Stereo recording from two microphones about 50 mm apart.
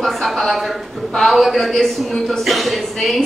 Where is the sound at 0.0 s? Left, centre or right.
Centre.